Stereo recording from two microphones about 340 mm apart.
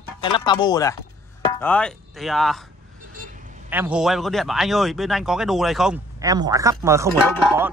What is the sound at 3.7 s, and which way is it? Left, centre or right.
Speech, centre.